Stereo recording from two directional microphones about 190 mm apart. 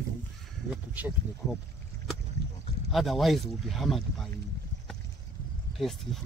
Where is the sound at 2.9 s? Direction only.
Centre (ahead or behind).